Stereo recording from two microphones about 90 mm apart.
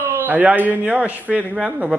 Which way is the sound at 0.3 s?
15° right (ahead or behind).